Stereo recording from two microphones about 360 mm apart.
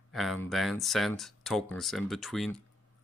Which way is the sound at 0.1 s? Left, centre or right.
Centre.